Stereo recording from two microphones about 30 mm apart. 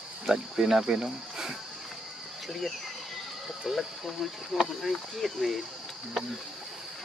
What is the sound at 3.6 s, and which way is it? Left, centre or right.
Speech, centre.